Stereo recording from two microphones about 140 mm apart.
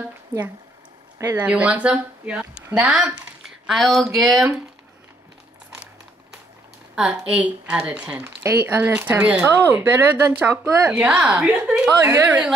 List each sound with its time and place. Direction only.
1.1 s speech: 15° right (ahead or behind)
7.0 s speech: 5° right (ahead or behind)
12.0 s a woman's voice: 20° right (ahead or behind)